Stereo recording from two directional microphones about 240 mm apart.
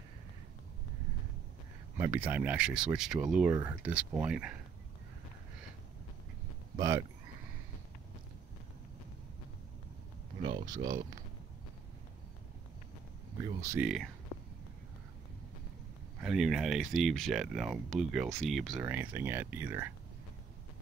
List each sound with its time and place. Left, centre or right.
2.0 s speech: centre
10.4 s speech: centre
13.4 s speech: centre
16.2 s speech: centre